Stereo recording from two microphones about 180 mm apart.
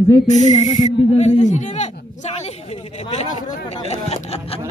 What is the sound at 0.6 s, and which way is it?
A man's voice, 40° left (ahead or behind).